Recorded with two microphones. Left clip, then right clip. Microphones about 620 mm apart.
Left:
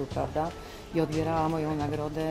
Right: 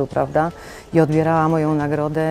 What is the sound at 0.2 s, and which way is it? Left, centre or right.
Speech, right.